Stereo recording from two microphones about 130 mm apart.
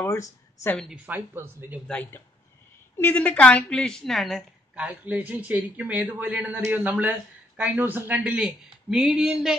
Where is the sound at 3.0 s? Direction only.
15° left (ahead or behind).